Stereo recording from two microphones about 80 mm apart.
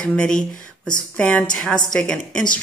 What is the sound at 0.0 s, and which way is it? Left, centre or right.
A woman's voice, centre.